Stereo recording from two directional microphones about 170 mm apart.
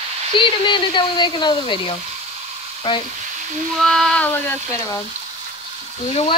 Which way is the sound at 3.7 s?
Centre (ahead or behind).